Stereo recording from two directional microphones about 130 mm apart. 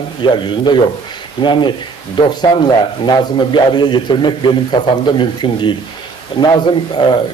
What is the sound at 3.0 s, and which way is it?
A man's voice, 35° left (ahead or behind).